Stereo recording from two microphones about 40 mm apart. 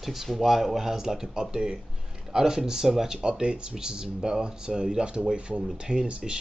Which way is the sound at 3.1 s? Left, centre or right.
Right.